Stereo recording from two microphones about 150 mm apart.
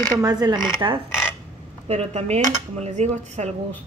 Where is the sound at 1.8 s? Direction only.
45° right (ahead or behind).